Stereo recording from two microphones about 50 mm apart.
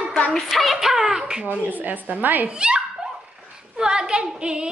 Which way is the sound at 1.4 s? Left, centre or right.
Right.